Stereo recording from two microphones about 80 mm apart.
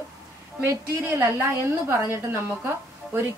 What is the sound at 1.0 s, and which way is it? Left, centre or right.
A woman's voice, right.